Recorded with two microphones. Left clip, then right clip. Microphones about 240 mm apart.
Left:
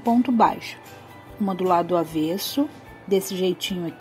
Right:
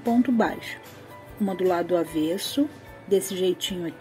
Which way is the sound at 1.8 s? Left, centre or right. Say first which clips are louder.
Left 1 dB; centre.